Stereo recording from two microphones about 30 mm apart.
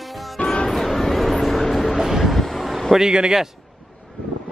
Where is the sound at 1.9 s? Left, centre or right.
Centre.